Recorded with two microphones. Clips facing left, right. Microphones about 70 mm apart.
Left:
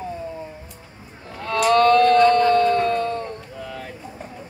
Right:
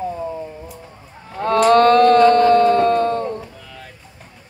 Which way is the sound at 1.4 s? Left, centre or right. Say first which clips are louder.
Right 4 dB; right.